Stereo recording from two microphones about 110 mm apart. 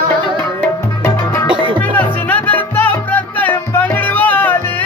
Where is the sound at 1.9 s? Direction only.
15° left (ahead or behind).